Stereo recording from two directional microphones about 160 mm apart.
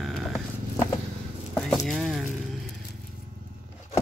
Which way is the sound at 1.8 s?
Centre (ahead or behind).